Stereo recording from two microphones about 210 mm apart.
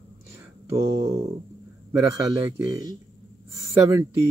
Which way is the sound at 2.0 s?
15° right (ahead or behind).